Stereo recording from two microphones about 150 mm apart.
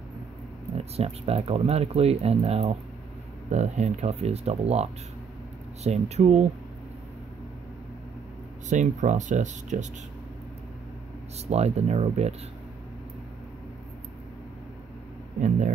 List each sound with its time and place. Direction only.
0.7 s speech: 45° right (ahead or behind)
5.9 s speech: 45° right (ahead or behind)
8.6 s speech: 55° right (ahead or behind)
11.4 s speech: 45° right (ahead or behind)